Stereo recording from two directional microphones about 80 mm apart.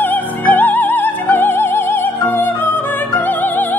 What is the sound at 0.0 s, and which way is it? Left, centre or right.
Music, left.